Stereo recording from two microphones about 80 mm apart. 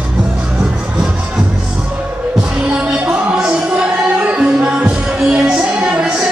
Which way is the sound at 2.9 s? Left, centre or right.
Centre.